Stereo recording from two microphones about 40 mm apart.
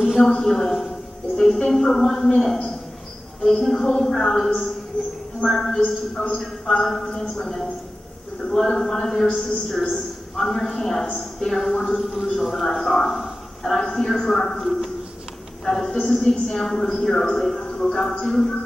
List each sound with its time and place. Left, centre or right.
0.4 s a man's voice: centre
1.3 s a sound: centre
1.7 s a man's voice: centre
6.2 s a man's voice: left
6.6 s a man's voice: centre
15.6 s a man's voice: centre
17.6 s a sound: left
17.8 s a man's voice: centre